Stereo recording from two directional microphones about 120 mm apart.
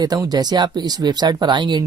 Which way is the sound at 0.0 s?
35° right (ahead or behind).